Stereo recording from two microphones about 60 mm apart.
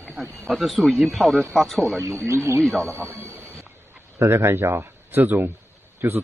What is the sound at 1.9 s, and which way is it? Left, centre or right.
Speech, right.